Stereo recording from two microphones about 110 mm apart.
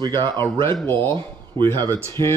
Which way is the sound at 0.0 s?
45° right (ahead or behind).